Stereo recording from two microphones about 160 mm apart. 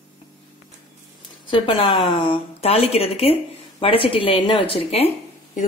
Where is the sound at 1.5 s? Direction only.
30° left (ahead or behind).